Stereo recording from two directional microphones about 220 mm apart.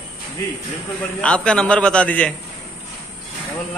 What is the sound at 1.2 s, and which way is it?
Speech, 5° left (ahead or behind).